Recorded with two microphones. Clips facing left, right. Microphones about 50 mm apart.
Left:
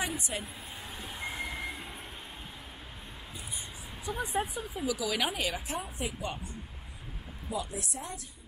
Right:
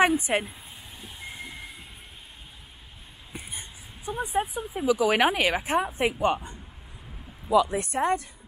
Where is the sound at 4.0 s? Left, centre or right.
Right.